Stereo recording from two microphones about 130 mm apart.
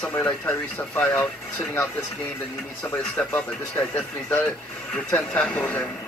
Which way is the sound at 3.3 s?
15° left (ahead or behind).